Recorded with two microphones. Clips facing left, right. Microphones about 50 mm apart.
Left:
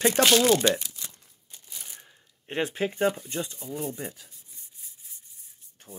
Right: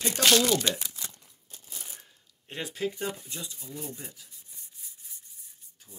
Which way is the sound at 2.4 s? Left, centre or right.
Left.